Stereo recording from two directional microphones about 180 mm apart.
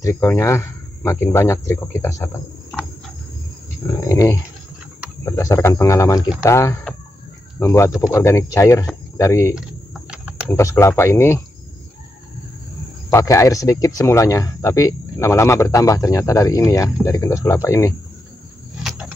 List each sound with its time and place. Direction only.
0.0 s speech: 15° left (ahead or behind)
4.1 s dog: 15° left (ahead or behind)
5.2 s speech: 15° left (ahead or behind)
13.1 s speech: 15° left (ahead or behind)